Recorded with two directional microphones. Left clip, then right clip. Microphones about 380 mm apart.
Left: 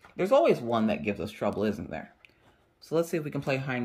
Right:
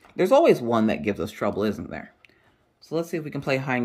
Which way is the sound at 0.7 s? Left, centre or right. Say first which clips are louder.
Right 5 dB; centre.